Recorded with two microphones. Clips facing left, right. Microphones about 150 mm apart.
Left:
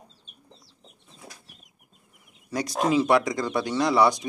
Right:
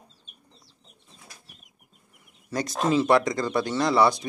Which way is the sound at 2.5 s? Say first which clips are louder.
Left 1 dB; 10° left (ahead or behind).